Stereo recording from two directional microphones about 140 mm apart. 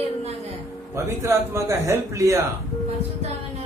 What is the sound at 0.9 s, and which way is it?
Speech, 20° right (ahead or behind).